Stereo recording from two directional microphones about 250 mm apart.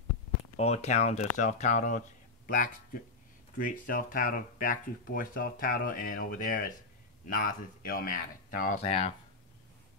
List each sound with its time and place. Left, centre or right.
0.6 s speech: left